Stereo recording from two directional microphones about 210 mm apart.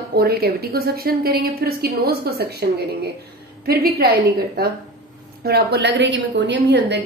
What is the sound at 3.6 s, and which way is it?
Speech, 45° right (ahead or behind).